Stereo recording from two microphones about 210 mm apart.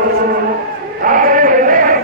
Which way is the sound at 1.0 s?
40° right (ahead or behind).